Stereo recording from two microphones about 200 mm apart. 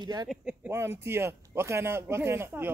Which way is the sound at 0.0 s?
20° right (ahead or behind).